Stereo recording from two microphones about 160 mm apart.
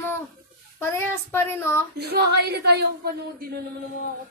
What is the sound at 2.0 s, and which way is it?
A woman's voice, 90° right.